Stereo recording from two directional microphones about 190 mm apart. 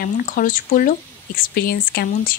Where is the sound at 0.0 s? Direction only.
45° left (ahead or behind).